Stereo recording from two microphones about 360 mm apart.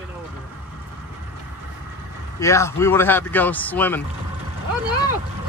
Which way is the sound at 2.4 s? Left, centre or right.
Centre.